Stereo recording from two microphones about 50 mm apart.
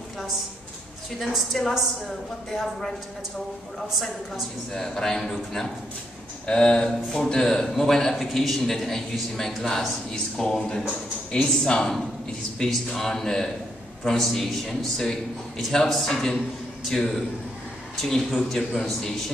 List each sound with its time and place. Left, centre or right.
1.3 s speech: centre
4.7 s speech: centre
6.4 s speech: centre